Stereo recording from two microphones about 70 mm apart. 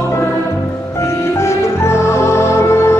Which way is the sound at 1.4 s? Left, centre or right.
Left.